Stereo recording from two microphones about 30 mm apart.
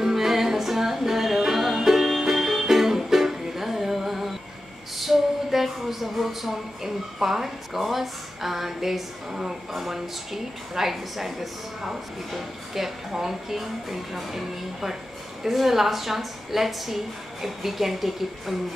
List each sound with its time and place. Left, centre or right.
0.0 s music: centre
4.9 s a sound: centre
9.8 s a woman's voice: centre